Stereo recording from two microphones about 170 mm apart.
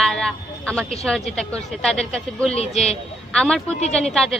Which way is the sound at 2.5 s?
35° left (ahead or behind).